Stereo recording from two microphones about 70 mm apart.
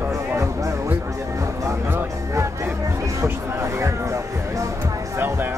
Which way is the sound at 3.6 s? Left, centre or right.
Right.